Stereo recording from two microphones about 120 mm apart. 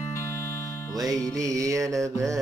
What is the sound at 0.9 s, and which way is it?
Music, 30° right (ahead or behind).